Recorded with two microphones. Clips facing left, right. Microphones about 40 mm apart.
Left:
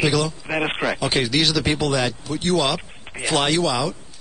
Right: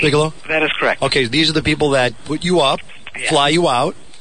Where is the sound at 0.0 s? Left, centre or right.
Right.